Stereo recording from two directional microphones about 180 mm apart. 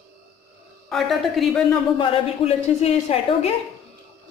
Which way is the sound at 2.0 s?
35° left (ahead or behind).